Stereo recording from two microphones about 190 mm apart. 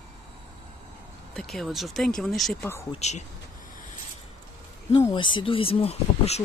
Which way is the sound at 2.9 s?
35° left (ahead or behind).